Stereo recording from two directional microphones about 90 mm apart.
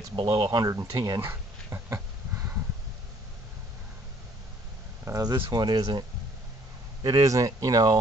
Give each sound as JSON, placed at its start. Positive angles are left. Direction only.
{"t": 0.1, "sound": "speech", "side_deg": -65}
{"t": 1.2, "sound": "a sound", "side_deg": -30}
{"t": 5.1, "sound": "speech", "side_deg": -40}
{"t": 5.5, "sound": "speech", "side_deg": -50}
{"t": 7.0, "sound": "speech", "side_deg": -40}